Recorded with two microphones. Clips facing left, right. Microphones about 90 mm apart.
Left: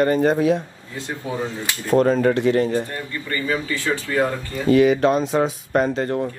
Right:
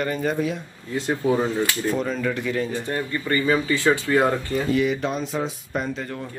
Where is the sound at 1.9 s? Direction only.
45° left (ahead or behind).